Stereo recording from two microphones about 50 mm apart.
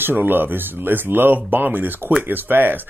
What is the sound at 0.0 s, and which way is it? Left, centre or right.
Speech, right.